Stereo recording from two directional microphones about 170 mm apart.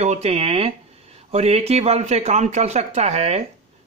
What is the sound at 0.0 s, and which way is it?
Speech, 40° right (ahead or behind).